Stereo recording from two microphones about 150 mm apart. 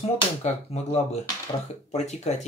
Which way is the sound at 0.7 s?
45° left (ahead or behind).